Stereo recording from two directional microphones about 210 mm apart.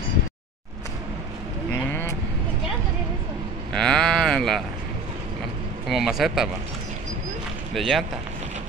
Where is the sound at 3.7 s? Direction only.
5° left (ahead or behind).